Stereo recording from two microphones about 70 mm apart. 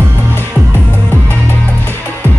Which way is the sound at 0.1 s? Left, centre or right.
Left.